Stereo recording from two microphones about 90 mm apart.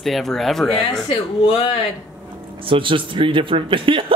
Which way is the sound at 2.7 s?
75° right (ahead or behind).